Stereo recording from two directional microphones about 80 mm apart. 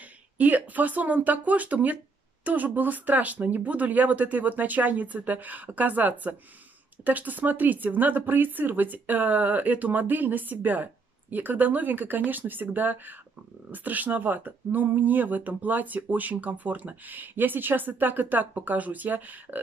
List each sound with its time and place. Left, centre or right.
0.4 s speech: right